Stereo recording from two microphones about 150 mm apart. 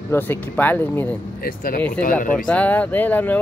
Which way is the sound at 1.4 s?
75° left (ahead or behind).